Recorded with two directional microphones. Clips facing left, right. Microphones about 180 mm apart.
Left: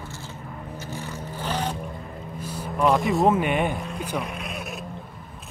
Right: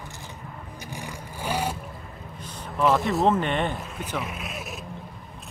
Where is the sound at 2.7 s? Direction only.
Centre (ahead or behind).